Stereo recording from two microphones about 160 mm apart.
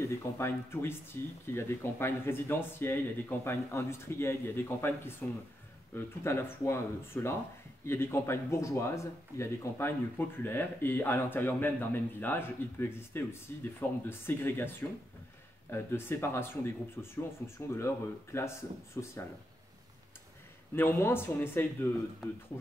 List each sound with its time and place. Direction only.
0.0 s speech: 15° left (ahead or behind)
20.7 s speech: 15° left (ahead or behind)